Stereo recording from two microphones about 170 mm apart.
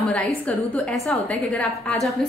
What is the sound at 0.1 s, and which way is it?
A woman's voice, 5° left (ahead or behind).